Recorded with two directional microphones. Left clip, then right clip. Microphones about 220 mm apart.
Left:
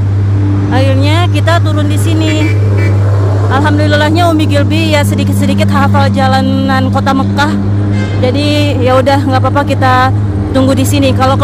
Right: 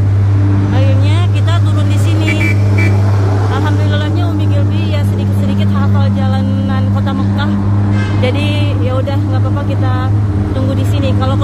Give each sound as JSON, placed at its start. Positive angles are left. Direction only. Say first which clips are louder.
{"t": 3.5, "sound": "vehicle", "louder": "left 8 dB", "side_deg": 25}
{"t": 5.5, "sound": "speech", "louder": "left 10 dB", "side_deg": 30}
{"t": 8.2, "sound": "music", "louder": "left 7 dB", "side_deg": 20}
{"t": 10.8, "sound": "speech", "louder": "left 8 dB", "side_deg": 30}